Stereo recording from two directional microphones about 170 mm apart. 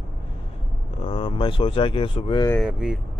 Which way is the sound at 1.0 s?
35° left (ahead or behind).